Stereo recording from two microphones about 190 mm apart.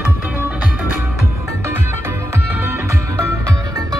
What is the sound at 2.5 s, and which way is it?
Music, 10° right (ahead or behind).